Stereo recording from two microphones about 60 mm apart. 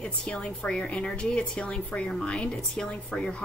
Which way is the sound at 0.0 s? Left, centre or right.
Centre.